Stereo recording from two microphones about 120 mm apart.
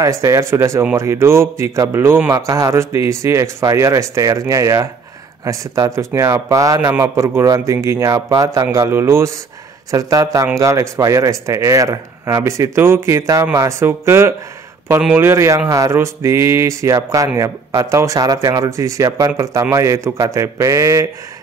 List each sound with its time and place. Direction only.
0.0 s a man's voice: 25° right (ahead or behind)